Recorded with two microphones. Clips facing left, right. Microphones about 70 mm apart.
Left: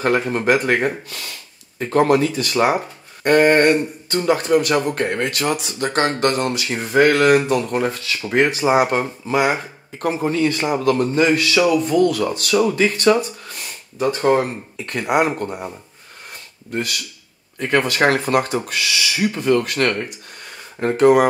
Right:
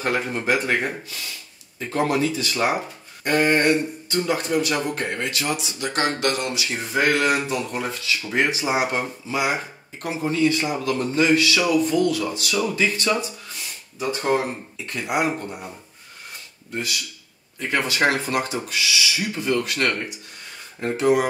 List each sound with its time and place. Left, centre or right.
0.0 s speech: left
16.7 s speech: left